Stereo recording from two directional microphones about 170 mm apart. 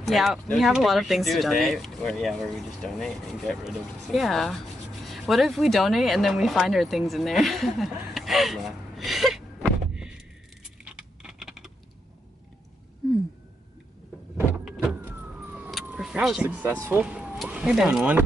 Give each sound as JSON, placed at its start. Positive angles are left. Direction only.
{"t": 0.0, "sound": "speech", "side_deg": 0}
{"t": 10.8, "sound": "a sound", "side_deg": -5}
{"t": 14.6, "sound": "vehicle", "side_deg": 0}
{"t": 16.8, "sound": "speech", "side_deg": -10}